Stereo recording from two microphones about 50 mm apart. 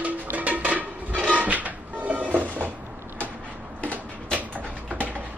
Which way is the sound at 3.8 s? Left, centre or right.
Left.